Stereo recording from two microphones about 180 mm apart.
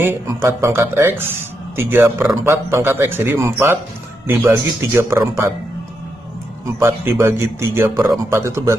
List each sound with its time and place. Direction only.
0.0 s speech: 15° right (ahead or behind)
6.8 s speech: 15° right (ahead or behind)